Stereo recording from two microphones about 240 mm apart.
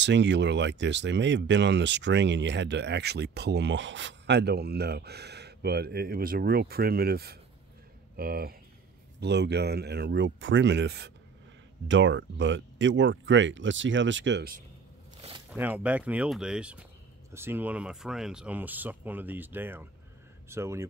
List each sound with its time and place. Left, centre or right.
0.0 s speech: right
15.5 s speech: centre